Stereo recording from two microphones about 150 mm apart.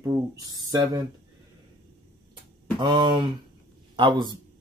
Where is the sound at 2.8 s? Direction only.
30° right (ahead or behind).